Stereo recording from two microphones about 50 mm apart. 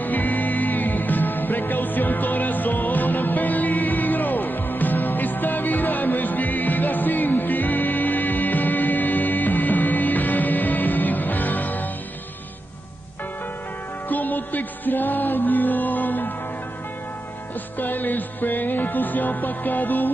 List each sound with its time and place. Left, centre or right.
0.0 s music: left
14.0 s music: left
17.7 s music: left